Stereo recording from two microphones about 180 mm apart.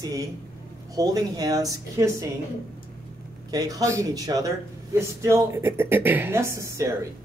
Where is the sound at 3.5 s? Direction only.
20° right (ahead or behind).